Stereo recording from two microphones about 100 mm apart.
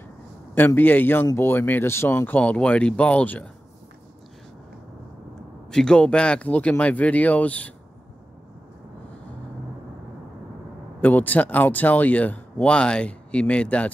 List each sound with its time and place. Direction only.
0.6 s a man's voice: 20° left (ahead or behind)
5.7 s speech: 10° left (ahead or behind)
11.0 s speech: 15° left (ahead or behind)